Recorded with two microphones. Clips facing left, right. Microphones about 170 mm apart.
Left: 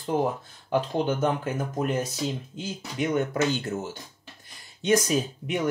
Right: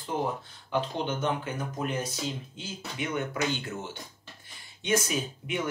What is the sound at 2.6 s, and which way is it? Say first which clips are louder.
Speech: left 6 dB; 40° left (ahead or behind).